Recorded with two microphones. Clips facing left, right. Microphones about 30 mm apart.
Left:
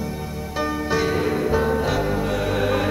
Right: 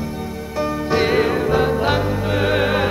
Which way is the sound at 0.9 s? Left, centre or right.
Right.